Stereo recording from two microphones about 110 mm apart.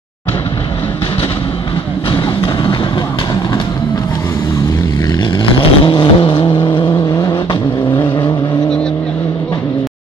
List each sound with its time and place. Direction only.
5.6 s vehicle: 50° left (ahead or behind)
6.9 s vehicle: 30° left (ahead or behind)